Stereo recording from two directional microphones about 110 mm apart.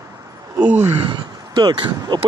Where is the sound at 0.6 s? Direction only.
15° right (ahead or behind).